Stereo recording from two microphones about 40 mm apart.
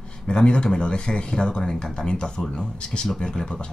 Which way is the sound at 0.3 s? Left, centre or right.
Left.